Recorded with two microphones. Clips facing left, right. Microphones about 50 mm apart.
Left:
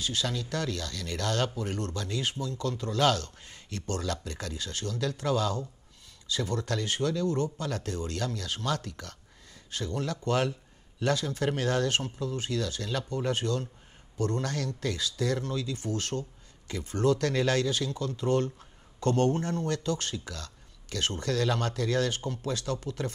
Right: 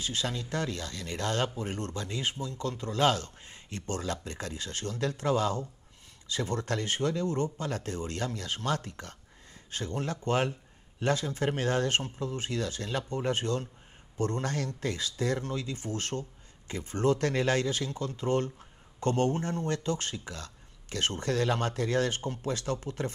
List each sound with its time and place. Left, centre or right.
0.0 s speech: right